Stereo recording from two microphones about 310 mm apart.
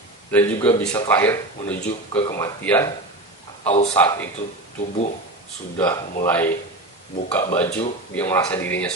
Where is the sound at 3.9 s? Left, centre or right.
Centre.